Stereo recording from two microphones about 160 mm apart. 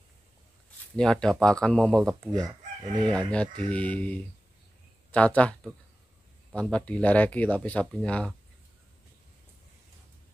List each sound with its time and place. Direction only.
0.9 s speech: 5° left (ahead or behind)
2.3 s chicken: 25° right (ahead or behind)
3.0 s speech: 5° left (ahead or behind)